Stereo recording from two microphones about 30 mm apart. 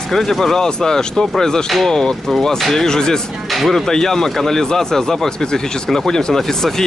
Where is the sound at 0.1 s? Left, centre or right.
Centre.